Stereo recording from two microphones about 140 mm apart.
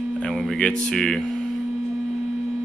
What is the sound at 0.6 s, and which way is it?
Speech, 5° left (ahead or behind).